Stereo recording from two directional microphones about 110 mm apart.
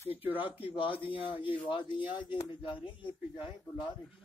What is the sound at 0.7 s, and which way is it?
Speech, 55° left (ahead or behind).